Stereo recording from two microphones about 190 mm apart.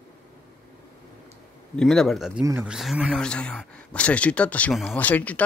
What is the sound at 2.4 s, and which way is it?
Speech, 15° right (ahead or behind).